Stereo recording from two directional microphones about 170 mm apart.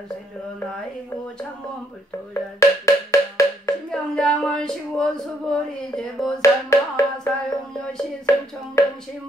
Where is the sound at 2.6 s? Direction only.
20° left (ahead or behind).